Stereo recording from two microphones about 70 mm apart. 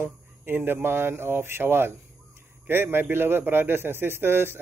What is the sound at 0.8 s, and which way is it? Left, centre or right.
A man's voice, right.